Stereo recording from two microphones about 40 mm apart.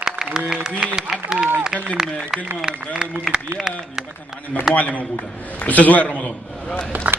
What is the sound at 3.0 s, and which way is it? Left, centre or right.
Speech, right.